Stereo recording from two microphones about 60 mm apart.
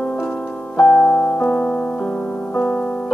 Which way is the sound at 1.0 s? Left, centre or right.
Centre.